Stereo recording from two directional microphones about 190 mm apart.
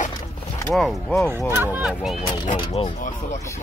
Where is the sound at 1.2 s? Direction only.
10° right (ahead or behind).